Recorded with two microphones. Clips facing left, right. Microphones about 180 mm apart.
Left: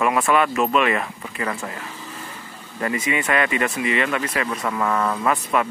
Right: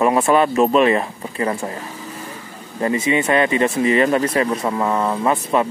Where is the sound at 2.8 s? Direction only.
25° right (ahead or behind).